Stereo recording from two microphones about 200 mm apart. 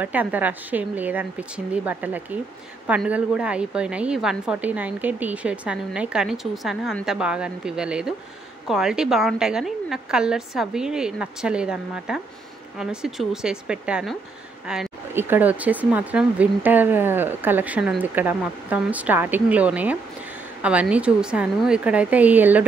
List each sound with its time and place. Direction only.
0.0 s a woman's voice: 10° right (ahead or behind)